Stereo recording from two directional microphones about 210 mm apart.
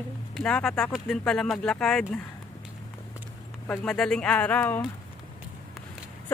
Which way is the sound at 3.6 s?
5° left (ahead or behind).